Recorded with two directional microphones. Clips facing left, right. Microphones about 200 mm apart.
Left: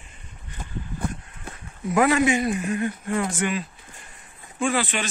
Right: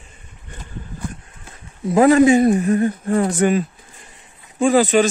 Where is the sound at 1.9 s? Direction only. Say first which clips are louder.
Right 8 dB; 35° right (ahead or behind).